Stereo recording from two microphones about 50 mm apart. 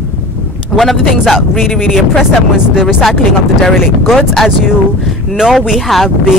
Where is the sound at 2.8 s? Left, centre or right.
Centre.